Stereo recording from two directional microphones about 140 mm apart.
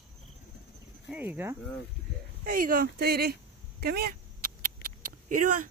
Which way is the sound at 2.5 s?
80° right.